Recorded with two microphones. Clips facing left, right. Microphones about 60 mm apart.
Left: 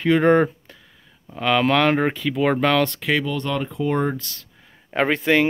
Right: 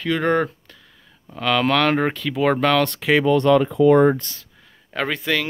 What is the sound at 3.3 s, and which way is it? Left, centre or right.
Speech, right.